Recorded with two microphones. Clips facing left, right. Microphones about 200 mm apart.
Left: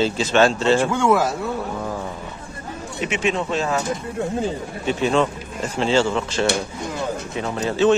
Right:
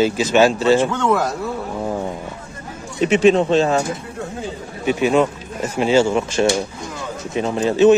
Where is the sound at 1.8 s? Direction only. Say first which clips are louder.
Right 5 dB; 25° right (ahead or behind).